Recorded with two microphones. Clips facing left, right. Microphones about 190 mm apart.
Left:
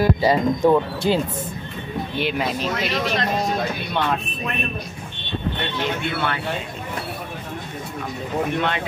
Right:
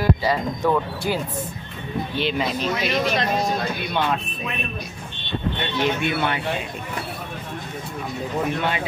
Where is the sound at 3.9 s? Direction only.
Centre (ahead or behind).